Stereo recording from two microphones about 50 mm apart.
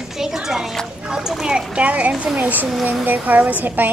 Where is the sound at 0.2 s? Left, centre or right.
Centre.